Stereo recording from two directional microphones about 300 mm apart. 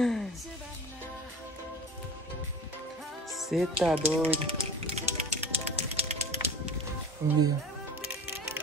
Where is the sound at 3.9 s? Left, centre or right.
Centre.